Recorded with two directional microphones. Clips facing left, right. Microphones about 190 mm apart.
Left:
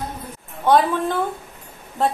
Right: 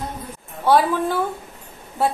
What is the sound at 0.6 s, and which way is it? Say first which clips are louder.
A woman's voice: even; 5° right (ahead or behind).